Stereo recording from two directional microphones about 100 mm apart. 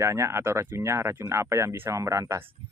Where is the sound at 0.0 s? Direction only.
30° right (ahead or behind).